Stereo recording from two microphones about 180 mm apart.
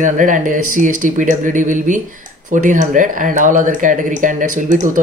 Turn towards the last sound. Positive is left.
turn(degrees=-45)  # may be behind; listen again after turning